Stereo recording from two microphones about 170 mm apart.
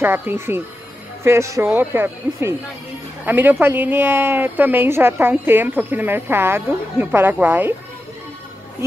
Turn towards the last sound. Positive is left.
turn(degrees=-10)  # may be behind; listen again after turning